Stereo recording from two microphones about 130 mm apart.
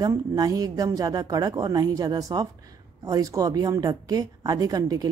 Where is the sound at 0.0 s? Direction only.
30° right (ahead or behind).